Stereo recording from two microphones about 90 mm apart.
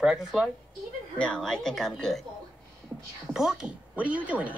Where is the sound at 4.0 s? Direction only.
15° right (ahead or behind).